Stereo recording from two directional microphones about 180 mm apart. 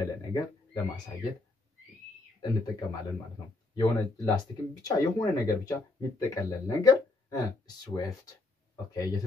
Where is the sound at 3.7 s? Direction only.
25° left (ahead or behind).